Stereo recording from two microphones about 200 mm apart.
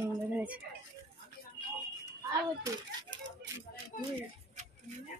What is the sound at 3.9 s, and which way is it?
Speech, 40° left (ahead or behind).